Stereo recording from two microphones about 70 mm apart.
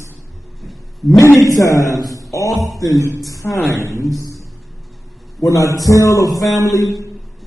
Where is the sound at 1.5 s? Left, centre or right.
Left.